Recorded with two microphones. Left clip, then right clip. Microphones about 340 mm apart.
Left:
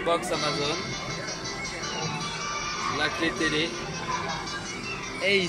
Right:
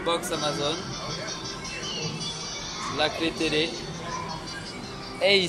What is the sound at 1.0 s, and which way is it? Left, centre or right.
Music, centre.